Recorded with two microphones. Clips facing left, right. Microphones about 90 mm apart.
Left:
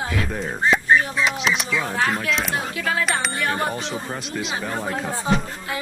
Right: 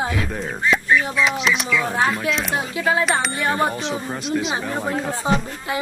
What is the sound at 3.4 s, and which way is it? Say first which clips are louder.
Speech: right 3 dB; 10° right (ahead or behind).